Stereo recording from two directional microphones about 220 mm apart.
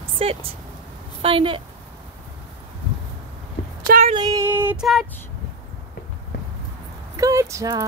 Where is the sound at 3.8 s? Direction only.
35° right (ahead or behind).